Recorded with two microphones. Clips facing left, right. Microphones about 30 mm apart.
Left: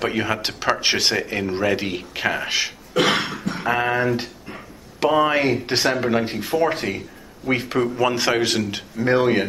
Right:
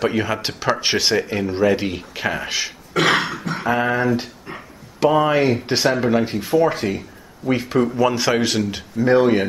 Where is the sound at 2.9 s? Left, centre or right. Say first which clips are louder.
Right 3 dB; right.